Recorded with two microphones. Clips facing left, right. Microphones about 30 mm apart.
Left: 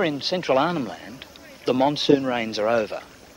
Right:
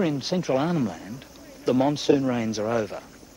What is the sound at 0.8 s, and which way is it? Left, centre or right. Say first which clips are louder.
Speech: right 1 dB; left.